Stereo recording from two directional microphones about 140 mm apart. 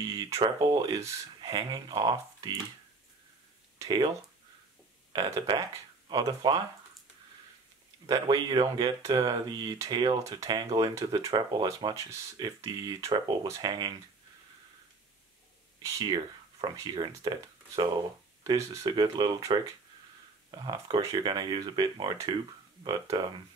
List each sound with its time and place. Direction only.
0.1 s speech: 25° right (ahead or behind)
3.7 s speech: 30° right (ahead or behind)
8.1 s speech: 30° right (ahead or behind)
16.0 s speech: 30° right (ahead or behind)